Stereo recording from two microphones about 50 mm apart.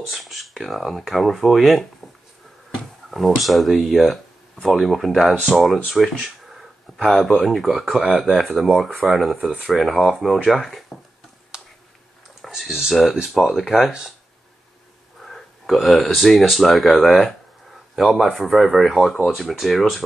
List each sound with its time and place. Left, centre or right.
0.0 s speech: centre
3.1 s speech: centre
10.9 s a sound: centre
11.5 s a sound: centre
12.4 s speech: centre
15.2 s speech: centre